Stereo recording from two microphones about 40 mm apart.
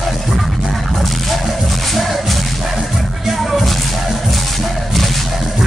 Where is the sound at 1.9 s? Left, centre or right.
Centre.